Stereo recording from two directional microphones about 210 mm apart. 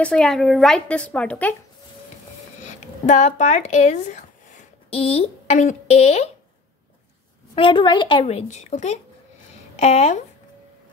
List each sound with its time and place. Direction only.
0.0 s a woman's voice: centre (ahead or behind)
3.1 s speech: 35° left (ahead or behind)
7.5 s a woman's voice: 25° left (ahead or behind)